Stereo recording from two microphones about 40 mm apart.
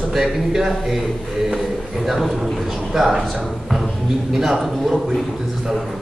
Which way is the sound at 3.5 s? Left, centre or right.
Centre.